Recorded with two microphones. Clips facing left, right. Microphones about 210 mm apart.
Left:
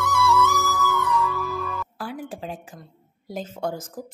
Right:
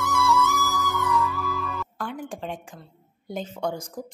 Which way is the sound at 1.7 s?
5° left (ahead or behind).